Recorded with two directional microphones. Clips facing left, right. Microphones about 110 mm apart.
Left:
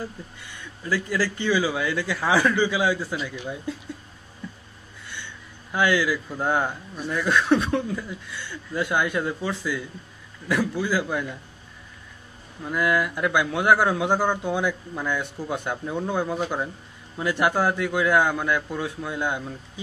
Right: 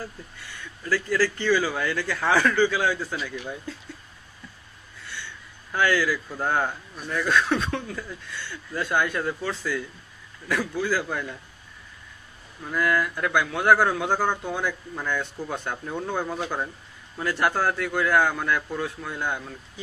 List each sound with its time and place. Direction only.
0.5 s a man's voice: 15° left (ahead or behind)
5.7 s a man's voice: 15° left (ahead or behind)
12.7 s a man's voice: 15° left (ahead or behind)